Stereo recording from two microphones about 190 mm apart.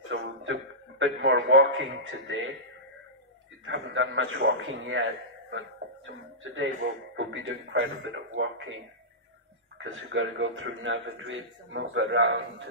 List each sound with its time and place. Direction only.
0.1 s a sound: 80° right
3.6 s a man's voice: 85° right
7.2 s a man's voice: 75° right (ahead or behind); by 8.7 s 90° right
9.8 s a man's voice: 80° right; by 12.6 s 65° right (ahead or behind)